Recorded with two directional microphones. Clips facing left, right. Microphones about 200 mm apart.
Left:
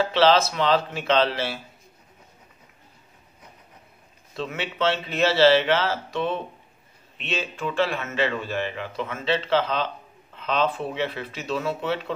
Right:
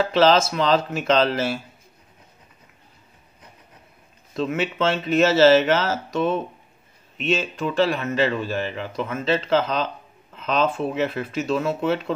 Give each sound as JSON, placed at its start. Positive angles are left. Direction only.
{"t": 0.1, "sound": "speech", "side_deg": -45}
{"t": 4.4, "sound": "a man's voice", "side_deg": -45}